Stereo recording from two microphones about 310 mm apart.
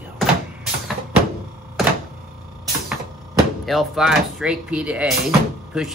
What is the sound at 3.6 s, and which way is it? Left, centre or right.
Speech, centre.